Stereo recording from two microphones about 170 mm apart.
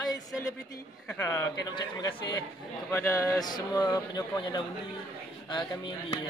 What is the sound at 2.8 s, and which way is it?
Speech, 15° left (ahead or behind).